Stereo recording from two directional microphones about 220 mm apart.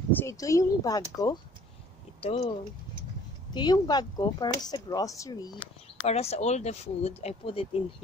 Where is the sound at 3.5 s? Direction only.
20° left (ahead or behind).